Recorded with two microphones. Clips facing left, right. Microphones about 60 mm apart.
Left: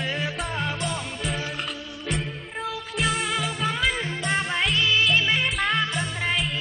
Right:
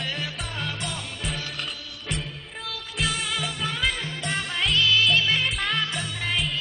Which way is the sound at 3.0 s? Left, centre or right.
Centre.